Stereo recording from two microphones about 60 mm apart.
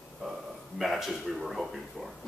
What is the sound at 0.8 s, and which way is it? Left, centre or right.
Speech, centre.